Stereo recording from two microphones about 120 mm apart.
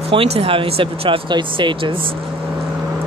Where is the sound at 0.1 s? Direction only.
50° right (ahead or behind).